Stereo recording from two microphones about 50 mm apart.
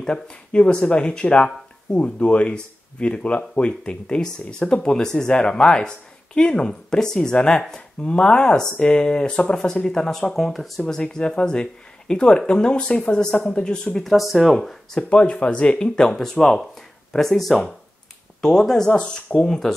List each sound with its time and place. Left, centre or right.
0.1 s speech: centre
10.8 s speech: centre
13.9 s speech: centre
15.0 s speech: left